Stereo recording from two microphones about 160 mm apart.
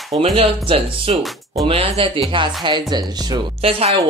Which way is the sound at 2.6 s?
25° right (ahead or behind).